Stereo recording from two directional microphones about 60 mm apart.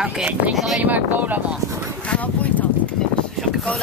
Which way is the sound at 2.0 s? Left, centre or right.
Left.